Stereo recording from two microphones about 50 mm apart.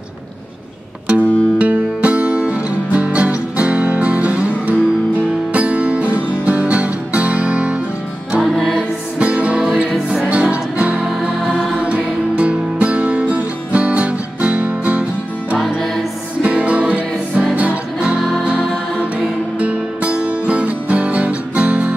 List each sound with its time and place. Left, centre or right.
1.0 s music: right
8.5 s music: centre
9.2 s music: right
16.4 s music: right